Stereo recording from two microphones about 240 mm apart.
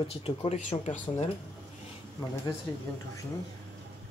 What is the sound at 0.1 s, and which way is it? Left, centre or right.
Speech, left.